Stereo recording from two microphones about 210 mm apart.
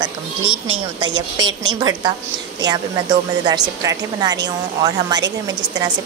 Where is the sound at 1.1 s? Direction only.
60° right (ahead or behind).